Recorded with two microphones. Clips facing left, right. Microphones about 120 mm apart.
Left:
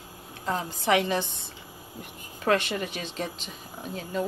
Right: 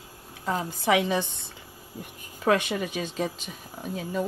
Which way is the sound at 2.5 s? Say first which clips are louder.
Right 1 dB; 5° right (ahead or behind).